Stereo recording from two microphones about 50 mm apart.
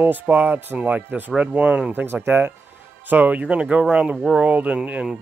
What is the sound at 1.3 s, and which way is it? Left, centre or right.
Speech, right.